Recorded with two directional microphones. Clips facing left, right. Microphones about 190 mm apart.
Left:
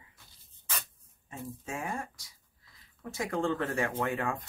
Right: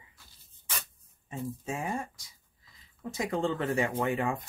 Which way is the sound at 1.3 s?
20° right (ahead or behind).